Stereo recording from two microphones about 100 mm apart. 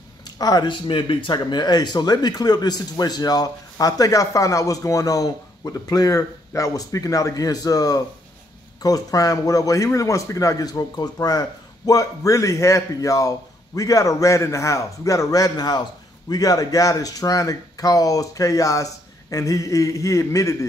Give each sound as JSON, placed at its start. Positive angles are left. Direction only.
{"t": 0.4, "sound": "speech", "side_deg": 40}
{"t": 0.8, "sound": "speech", "side_deg": 60}